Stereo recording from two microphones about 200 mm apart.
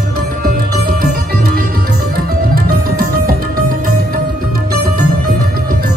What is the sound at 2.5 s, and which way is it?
Music, 50° right (ahead or behind).